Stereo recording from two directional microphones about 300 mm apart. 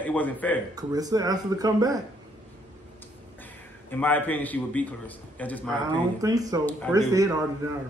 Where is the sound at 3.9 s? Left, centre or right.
Centre.